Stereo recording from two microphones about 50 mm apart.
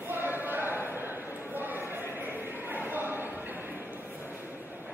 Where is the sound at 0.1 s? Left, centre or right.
Right.